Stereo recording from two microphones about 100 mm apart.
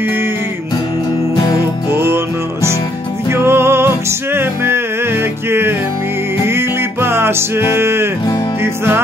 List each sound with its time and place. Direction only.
1.9 s music: 25° right (ahead or behind)